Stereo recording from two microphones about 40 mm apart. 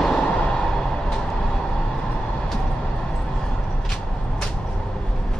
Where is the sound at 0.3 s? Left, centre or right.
Left.